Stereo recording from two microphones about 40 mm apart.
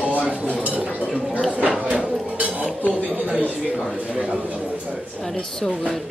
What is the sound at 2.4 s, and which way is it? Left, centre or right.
Dishes, right.